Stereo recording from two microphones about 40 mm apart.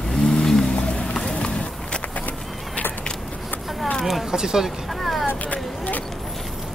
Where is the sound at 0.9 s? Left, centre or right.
Centre.